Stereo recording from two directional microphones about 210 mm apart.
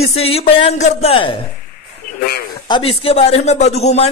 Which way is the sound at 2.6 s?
25° left (ahead or behind).